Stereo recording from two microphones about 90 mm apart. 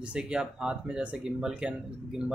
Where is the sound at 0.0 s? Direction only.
10° right (ahead or behind).